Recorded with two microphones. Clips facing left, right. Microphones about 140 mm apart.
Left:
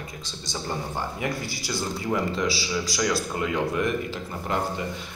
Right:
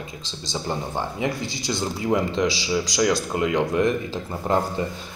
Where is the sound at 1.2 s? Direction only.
20° right (ahead or behind).